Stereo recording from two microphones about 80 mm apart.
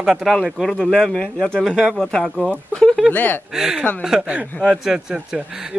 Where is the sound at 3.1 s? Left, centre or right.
Left.